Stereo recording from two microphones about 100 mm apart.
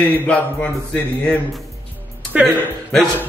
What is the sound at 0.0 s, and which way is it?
Speech, 15° left (ahead or behind).